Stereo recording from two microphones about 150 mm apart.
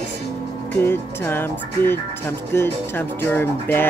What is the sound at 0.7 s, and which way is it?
Music, 15° left (ahead or behind).